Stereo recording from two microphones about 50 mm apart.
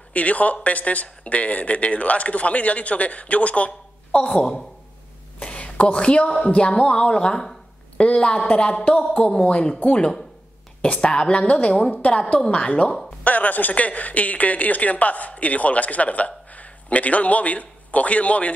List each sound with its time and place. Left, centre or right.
0.1 s a woman's voice: left
4.4 s speech: centre
5.4 s a woman's voice: left